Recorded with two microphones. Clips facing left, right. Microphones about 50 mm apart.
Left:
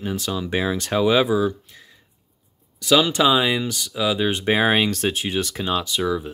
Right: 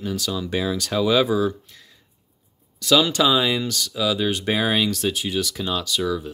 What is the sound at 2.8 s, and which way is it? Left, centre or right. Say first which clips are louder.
Speech: left 1 dB; centre.